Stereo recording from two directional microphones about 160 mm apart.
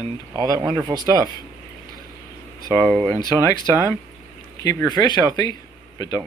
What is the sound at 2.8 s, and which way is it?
Speech, 10° left (ahead or behind).